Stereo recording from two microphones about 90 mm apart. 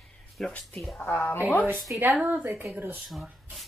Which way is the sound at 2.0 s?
20° right (ahead or behind).